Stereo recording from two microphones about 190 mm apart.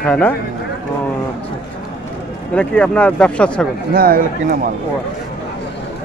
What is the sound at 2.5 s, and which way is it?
Speech, 5° left (ahead or behind).